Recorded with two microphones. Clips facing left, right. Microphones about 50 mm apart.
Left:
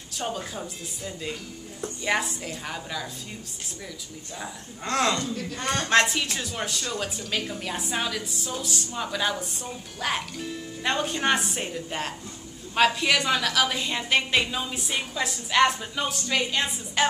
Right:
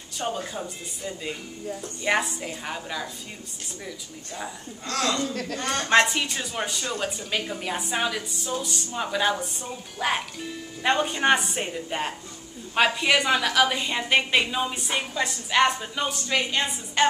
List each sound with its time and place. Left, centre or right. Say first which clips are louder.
0.2 s speech: right 2 dB; centre
4.8 s a woman's voice: left 2 dB; left
5.3 s a man's voice: right 2 dB; right
5.6 s speech: left 1 dB; centre
5.9 s speech: right 2 dB; centre
8.5 s a woman's voice: right 3 dB; centre
8.9 s a woman's voice: right 4 dB; centre